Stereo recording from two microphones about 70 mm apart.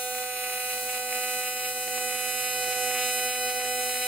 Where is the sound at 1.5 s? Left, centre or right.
Centre.